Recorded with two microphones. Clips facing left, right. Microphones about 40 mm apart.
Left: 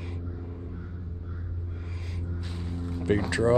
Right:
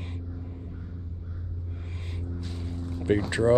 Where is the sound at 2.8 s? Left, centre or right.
Centre.